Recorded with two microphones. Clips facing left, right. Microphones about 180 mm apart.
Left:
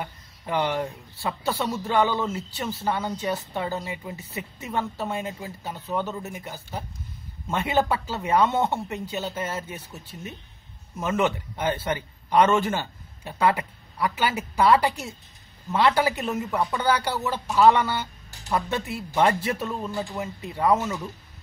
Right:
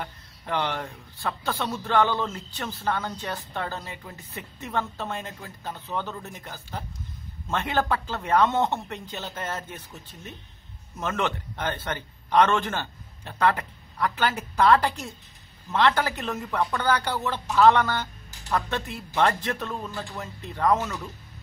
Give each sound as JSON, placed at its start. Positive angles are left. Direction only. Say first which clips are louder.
{"t": 0.0, "sound": "a man's voice", "louder": "left 2 dB", "side_deg": 10}